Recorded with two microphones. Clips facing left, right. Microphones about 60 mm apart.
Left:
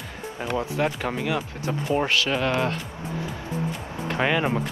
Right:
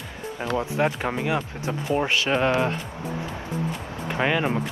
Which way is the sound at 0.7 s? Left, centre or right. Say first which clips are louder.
Right 1 dB; right.